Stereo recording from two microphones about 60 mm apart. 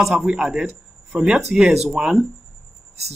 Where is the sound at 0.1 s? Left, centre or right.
Centre.